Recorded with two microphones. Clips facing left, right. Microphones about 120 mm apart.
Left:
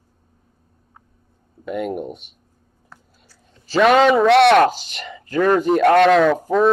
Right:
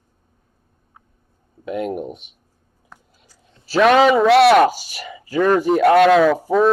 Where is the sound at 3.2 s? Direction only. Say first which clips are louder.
Even; 15° right (ahead or behind).